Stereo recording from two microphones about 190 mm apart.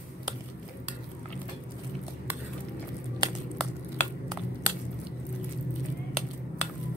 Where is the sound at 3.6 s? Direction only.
Centre (ahead or behind).